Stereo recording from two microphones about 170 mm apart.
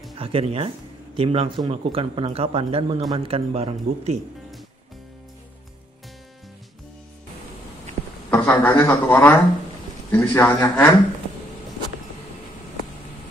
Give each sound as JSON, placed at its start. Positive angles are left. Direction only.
{"t": 0.2, "sound": "speech", "side_deg": -35}
{"t": 8.3, "sound": "speech", "side_deg": 10}